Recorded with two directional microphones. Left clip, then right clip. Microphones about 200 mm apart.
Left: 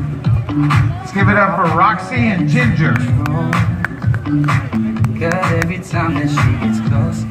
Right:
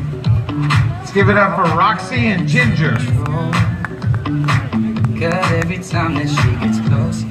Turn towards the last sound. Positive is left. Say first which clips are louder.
# left 1 dB
turn(degrees=-25)  # may be behind; listen again after turning